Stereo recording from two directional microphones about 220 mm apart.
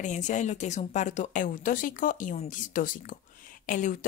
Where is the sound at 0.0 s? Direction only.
35° left (ahead or behind).